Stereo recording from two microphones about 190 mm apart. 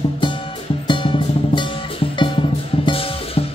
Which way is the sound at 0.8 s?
25° left (ahead or behind).